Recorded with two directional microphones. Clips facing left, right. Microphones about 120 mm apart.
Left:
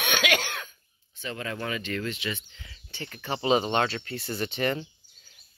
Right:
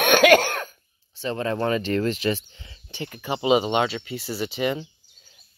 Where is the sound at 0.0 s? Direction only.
50° right (ahead or behind).